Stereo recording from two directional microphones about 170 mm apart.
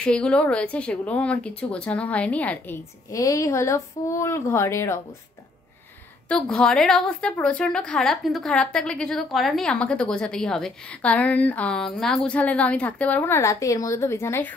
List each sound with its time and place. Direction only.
0.0 s a woman's voice: 5° left (ahead or behind)
6.2 s a woman's voice: 5° left (ahead or behind)